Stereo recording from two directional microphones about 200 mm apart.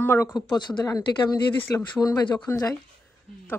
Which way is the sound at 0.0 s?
10° left (ahead or behind).